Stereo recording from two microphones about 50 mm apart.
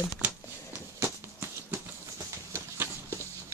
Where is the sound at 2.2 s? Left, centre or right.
Right.